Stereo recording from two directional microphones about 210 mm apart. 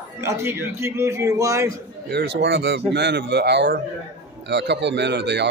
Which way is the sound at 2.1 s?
55° right (ahead or behind).